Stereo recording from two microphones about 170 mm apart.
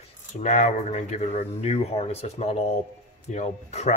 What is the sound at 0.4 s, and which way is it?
Speech, 45° left (ahead or behind).